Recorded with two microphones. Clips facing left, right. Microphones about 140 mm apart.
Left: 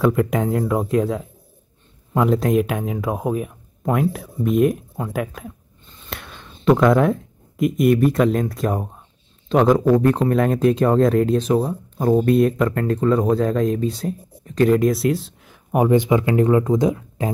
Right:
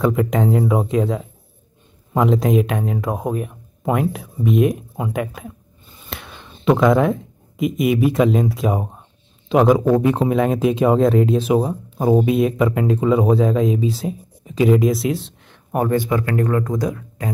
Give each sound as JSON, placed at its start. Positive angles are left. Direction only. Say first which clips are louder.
{"t": 0.0, "sound": "speech", "louder": "even", "side_deg": 0}
{"t": 15.7, "sound": "speech", "louder": "left 3 dB", "side_deg": 15}